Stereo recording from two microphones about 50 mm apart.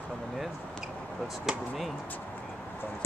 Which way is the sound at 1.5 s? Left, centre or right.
Centre.